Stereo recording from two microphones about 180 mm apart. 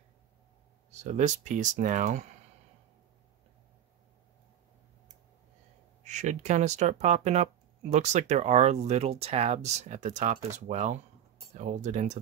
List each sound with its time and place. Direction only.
1.0 s speech: 40° right (ahead or behind)
6.0 s speech: 40° right (ahead or behind)